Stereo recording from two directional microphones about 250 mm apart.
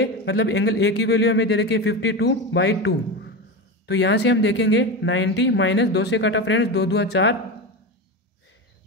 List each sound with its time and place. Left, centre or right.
0.0 s speech: left